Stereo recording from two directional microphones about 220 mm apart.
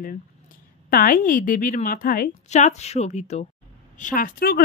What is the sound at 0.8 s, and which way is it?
A woman's voice, 40° left (ahead or behind).